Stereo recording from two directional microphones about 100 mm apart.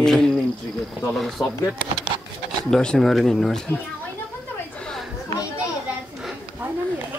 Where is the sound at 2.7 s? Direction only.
5° left (ahead or behind).